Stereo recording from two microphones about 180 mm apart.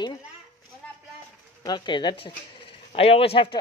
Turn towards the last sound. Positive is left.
turn(degrees=30)  # may be behind; listen again after turning